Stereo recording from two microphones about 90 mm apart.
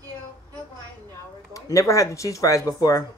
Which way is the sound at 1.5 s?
35° left (ahead or behind).